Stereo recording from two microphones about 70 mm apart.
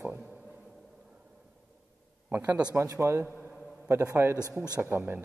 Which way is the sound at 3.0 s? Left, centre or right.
Right.